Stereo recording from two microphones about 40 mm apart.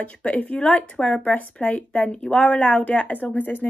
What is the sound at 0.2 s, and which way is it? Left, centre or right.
A woman's voice, left.